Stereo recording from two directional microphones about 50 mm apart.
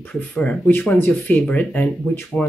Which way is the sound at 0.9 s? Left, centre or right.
Left.